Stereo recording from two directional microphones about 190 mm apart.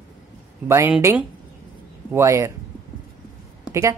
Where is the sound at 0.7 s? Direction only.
15° right (ahead or behind).